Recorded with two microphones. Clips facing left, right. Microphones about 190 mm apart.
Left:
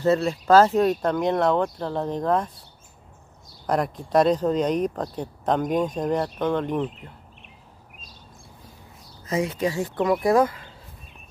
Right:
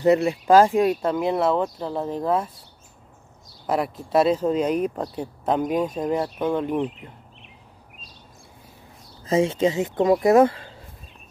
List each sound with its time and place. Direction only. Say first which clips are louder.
0.0 s speech: right 3 dB; 15° right (ahead or behind)
3.6 s speech: even; 5° right (ahead or behind)
9.2 s speech: right 5 dB; 25° right (ahead or behind)